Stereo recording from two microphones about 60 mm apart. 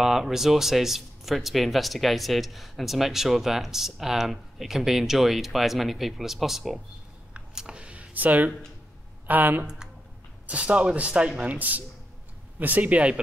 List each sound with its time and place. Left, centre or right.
0.0 s speech: centre
7.3 s computer keyboard: centre
9.3 s speech: right